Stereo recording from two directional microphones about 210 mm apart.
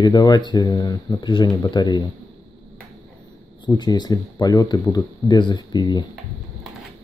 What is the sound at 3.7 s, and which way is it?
Speech, 20° left (ahead or behind).